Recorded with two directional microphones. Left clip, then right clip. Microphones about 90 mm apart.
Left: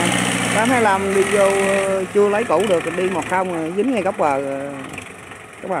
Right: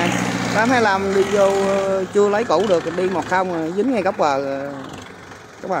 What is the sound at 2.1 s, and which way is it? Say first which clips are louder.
Speech: even; 5° left (ahead or behind).